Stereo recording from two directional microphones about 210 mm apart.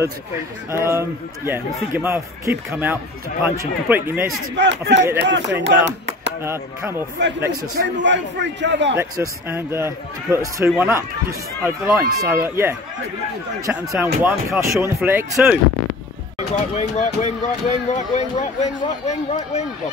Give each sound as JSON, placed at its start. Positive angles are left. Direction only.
{"t": 0.7, "sound": "a man's voice", "side_deg": -10}
{"t": 4.6, "sound": "a man's voice", "side_deg": -55}
{"t": 6.4, "sound": "a man's voice", "side_deg": -10}
{"t": 7.2, "sound": "a man's voice", "side_deg": -55}
{"t": 8.9, "sound": "a man's voice", "side_deg": -15}
{"t": 13.9, "sound": "a man's voice", "side_deg": -5}
{"t": 16.7, "sound": "speech", "side_deg": 30}